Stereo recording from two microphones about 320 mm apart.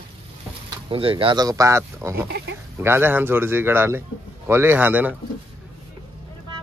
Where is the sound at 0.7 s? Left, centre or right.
Centre.